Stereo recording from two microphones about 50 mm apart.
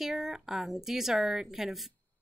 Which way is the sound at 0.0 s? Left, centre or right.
Centre.